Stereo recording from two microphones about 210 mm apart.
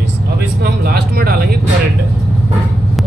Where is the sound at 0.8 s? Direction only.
45° right (ahead or behind).